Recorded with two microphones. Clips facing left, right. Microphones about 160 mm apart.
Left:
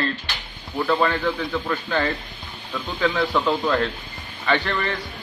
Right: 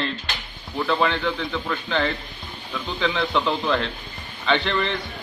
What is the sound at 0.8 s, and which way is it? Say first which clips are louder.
A man's voice: left 1 dB; 5° left (ahead or behind).